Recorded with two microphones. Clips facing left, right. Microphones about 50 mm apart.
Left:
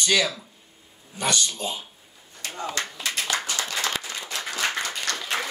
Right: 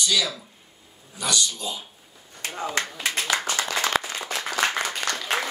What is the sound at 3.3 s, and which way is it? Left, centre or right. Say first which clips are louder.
Clapping: right 3 dB; right.